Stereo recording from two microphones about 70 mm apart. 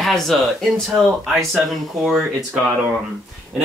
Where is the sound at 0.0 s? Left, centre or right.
Centre.